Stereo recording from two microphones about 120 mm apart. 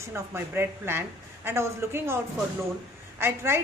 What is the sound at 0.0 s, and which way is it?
A woman's voice, 20° right (ahead or behind).